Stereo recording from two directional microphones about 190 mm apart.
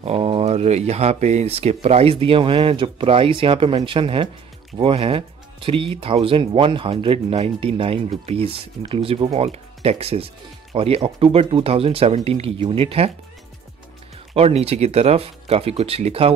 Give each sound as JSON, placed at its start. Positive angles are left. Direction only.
{"t": 0.0, "sound": "speech", "side_deg": -30}
{"t": 14.3, "sound": "speech", "side_deg": -30}